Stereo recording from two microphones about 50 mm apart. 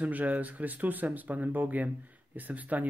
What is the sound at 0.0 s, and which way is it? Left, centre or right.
Speech, right.